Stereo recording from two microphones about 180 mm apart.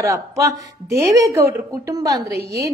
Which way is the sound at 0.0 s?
15° right (ahead or behind).